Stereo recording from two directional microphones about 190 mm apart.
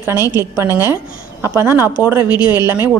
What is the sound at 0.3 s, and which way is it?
A woman's voice, 10° right (ahead or behind).